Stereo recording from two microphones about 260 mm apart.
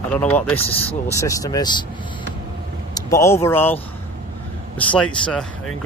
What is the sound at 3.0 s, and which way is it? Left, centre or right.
Speech, centre.